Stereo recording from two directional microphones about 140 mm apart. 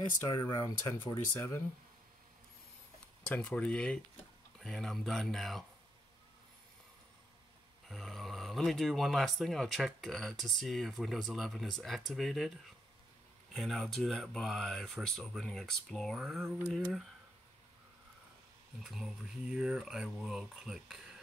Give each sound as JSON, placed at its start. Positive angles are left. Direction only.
{"t": 0.2, "sound": "speech", "side_deg": 25}
{"t": 3.3, "sound": "speech", "side_deg": 10}
{"t": 7.9, "sound": "speech", "side_deg": 0}
{"t": 18.8, "sound": "speech", "side_deg": 0}